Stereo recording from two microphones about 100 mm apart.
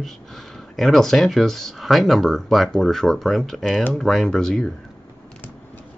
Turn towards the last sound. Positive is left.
turn(degrees=5)  # may be behind; listen again after turning